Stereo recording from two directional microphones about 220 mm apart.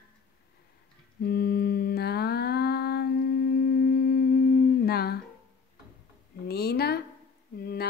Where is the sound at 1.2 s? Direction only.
45° left (ahead or behind).